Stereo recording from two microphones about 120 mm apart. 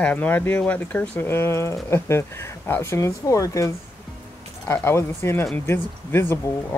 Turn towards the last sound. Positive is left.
turn(degrees=20)  # may be behind; listen again after turning